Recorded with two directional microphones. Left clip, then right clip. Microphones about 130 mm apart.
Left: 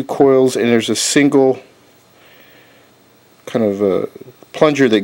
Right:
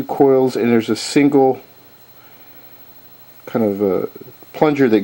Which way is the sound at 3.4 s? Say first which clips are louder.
Left 2 dB; 45° left (ahead or behind).